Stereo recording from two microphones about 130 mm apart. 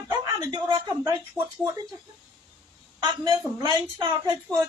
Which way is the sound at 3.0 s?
35° right (ahead or behind).